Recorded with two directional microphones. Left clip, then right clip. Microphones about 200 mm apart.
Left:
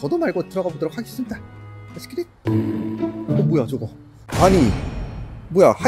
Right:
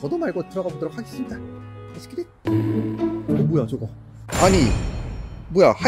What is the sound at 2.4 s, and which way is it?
Music, centre (ahead or behind).